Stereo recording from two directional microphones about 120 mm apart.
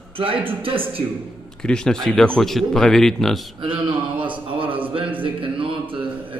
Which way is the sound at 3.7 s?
40° right (ahead or behind).